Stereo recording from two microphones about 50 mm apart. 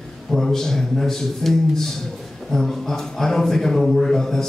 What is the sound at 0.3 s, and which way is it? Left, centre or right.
A man's voice, centre.